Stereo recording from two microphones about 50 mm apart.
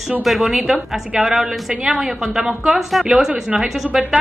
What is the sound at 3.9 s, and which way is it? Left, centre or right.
Speech, centre.